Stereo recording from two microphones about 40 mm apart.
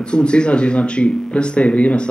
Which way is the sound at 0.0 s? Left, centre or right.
Left.